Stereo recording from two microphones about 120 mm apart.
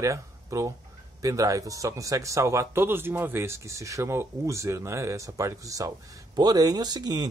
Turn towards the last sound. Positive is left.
turn(degrees=-35)  # may be behind; listen again after turning